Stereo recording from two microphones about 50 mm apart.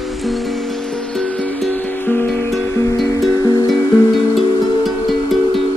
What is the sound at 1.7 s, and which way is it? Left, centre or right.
Music, left.